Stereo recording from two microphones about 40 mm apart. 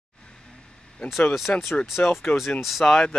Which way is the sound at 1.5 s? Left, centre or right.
Left.